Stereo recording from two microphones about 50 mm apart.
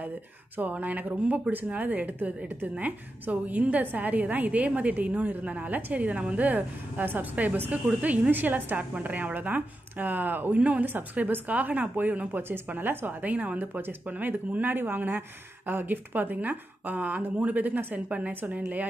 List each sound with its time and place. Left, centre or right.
0.6 s a woman's voice: right
12.3 s speech: right
12.6 s a woman's voice: right